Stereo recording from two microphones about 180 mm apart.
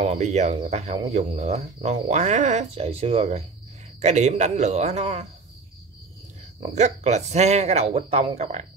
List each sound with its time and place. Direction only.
0.0 s speech: 40° right (ahead or behind)
6.6 s speech: 40° right (ahead or behind)